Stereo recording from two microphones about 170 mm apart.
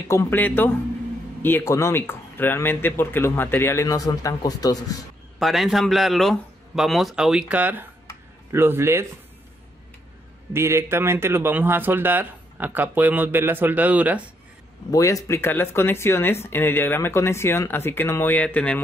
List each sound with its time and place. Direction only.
0.1 s speech: 10° left (ahead or behind)
5.4 s speech: centre (ahead or behind)
10.5 s speech: 15° right (ahead or behind)
14.9 s speech: 20° left (ahead or behind)